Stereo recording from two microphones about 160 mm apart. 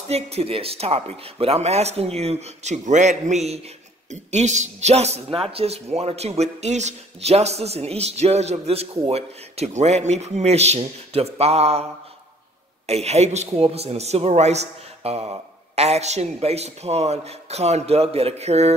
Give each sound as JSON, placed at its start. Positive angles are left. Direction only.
{"t": 0.1, "sound": "speech", "side_deg": -40}
{"t": 12.8, "sound": "speech", "side_deg": -40}